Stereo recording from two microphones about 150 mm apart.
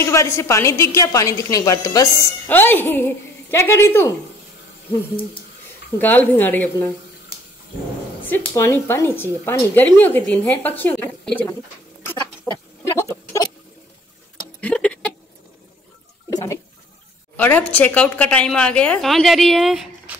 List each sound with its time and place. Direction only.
0.0 s a woman's voice: 20° left (ahead or behind)
2.4 s a woman's voice: 15° left (ahead or behind)
5.9 s a woman's voice: 10° left (ahead or behind)
8.5 s a woman's voice: 15° left (ahead or behind)
12.2 s goat: 25° left (ahead or behind)
13.1 s a sound: 20° left (ahead or behind)
14.6 s a sound: 10° left (ahead or behind)
16.3 s water: 20° left (ahead or behind)
17.4 s a woman's voice: 10° left (ahead or behind)